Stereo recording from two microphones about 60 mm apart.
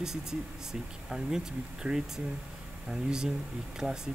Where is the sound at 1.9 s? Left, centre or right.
Right.